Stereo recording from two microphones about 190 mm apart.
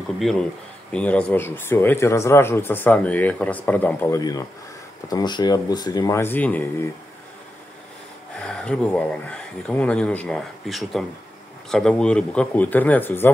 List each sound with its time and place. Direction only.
0.2 s speech: centre (ahead or behind)
8.4 s speech: 5° left (ahead or behind)